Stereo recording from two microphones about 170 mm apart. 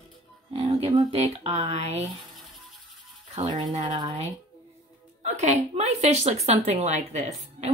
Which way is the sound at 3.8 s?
25° right (ahead or behind).